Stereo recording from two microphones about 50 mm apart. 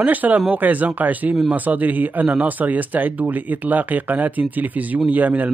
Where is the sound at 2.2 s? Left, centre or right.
Right.